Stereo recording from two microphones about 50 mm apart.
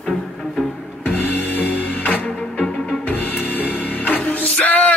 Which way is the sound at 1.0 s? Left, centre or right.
Left.